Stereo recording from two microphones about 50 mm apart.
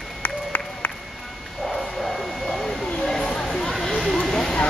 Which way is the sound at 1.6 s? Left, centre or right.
Centre.